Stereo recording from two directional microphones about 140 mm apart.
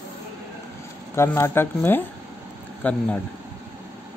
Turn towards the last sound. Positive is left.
turn(degrees=10)  # may be behind; listen again after turning